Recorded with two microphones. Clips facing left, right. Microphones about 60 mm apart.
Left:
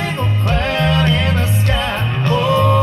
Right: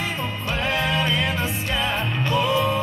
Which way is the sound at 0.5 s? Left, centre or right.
Left.